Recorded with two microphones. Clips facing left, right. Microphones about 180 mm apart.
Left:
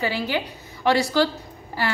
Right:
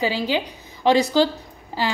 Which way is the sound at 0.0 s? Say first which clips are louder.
Right 3 dB; 15° right (ahead or behind).